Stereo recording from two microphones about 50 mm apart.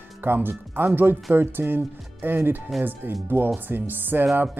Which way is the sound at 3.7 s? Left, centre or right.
Right.